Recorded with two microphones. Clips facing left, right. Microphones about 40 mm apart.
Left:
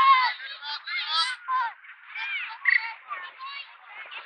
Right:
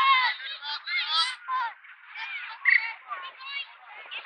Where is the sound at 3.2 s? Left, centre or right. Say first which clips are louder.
Right 1 dB; right.